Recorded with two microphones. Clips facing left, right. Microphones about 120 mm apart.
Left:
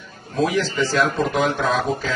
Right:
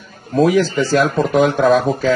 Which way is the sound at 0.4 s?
50° right (ahead or behind).